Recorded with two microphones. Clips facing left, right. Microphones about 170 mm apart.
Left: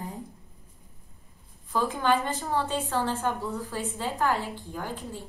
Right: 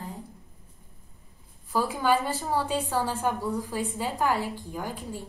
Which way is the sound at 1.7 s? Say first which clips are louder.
Right 1 dB; 10° right (ahead or behind).